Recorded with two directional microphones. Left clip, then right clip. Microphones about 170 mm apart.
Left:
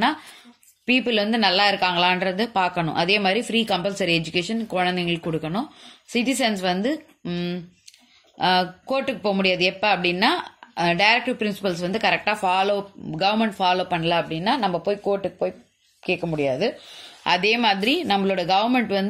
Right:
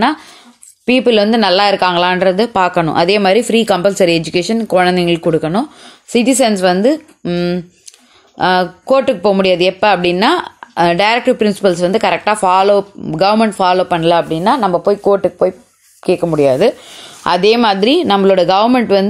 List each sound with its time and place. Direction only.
0.8 s speech: 60° right (ahead or behind)
16.0 s speech: 90° right
17.2 s speech: 60° right (ahead or behind)